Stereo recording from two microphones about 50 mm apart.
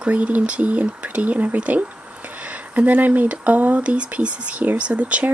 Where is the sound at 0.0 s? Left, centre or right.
Right.